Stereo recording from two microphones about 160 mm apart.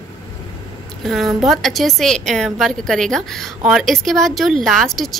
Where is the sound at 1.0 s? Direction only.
Centre (ahead or behind).